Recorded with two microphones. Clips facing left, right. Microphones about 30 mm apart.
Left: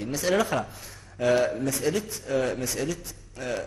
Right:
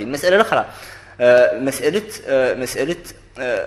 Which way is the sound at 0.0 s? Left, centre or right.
Right.